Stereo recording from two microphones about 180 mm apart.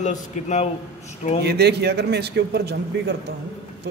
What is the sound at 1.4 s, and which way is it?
Speech, 65° right (ahead or behind).